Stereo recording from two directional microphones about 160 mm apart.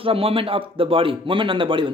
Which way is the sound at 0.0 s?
35° right (ahead or behind).